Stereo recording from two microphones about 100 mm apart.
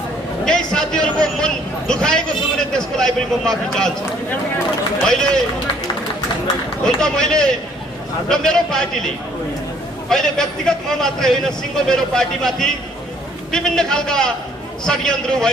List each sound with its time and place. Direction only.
0.5 s a man's voice: 5° left (ahead or behind)
5.0 s a man's voice: 5° left (ahead or behind)
6.8 s a man's voice: 5° left (ahead or behind)